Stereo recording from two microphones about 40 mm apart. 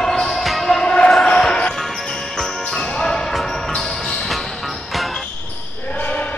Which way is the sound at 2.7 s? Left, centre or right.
Centre.